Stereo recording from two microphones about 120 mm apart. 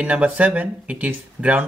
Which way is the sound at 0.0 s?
10° right (ahead or behind).